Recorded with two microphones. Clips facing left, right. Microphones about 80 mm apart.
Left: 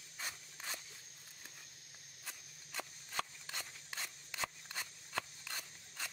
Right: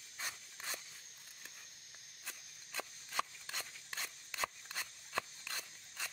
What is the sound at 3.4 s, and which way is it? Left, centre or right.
Scissors, centre.